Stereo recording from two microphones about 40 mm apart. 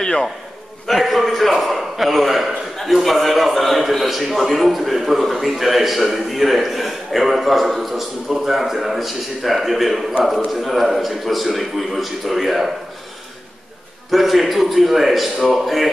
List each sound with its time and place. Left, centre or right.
0.0 s a sound: centre
0.8 s a man's voice: centre
14.1 s a man's voice: centre